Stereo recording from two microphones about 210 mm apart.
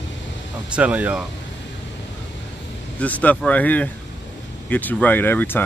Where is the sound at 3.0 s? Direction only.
5° left (ahead or behind).